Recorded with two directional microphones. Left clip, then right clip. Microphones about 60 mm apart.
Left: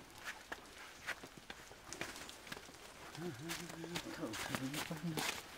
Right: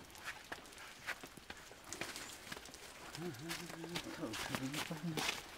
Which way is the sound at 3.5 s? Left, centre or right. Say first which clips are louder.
Even; centre.